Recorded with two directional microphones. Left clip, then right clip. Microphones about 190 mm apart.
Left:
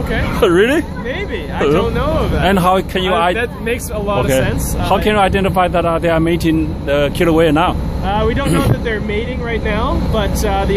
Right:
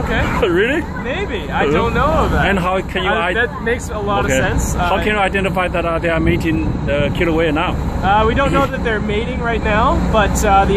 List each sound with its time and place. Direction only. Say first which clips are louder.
0.4 s a man's voice: left 5 dB; 35° left (ahead or behind)
2.4 s a man's voice: left 4 dB; 35° left (ahead or behind)
8.1 s speech: right 3 dB; 10° left (ahead or behind)
9.5 s speech: right 5 dB; 5° left (ahead or behind)